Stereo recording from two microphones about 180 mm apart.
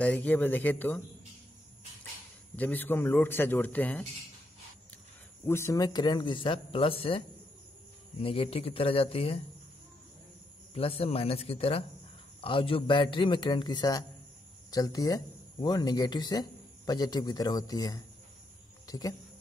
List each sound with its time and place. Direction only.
0.0 s a man's voice: 10° left (ahead or behind)
2.5 s a man's voice: 10° left (ahead or behind)
5.5 s speech: 15° left (ahead or behind); by 9.4 s 30° left (ahead or behind)
10.7 s speech: 35° left (ahead or behind)